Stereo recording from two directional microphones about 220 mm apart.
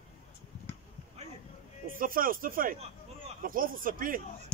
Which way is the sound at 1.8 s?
40° right (ahead or behind).